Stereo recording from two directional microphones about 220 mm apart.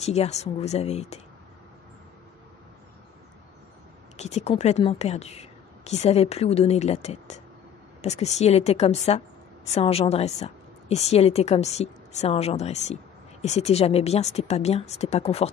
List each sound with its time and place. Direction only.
0.0 s a woman's voice: 30° left (ahead or behind)
4.2 s a woman's voice: 30° left (ahead or behind)